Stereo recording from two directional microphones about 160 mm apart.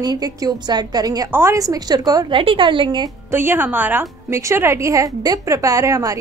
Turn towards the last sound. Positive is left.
turn(degrees=-20)  # may be behind; listen again after turning